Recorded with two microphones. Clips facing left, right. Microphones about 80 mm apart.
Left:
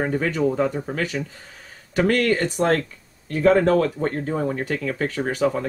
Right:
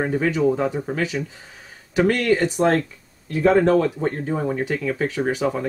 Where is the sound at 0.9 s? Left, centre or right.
Left.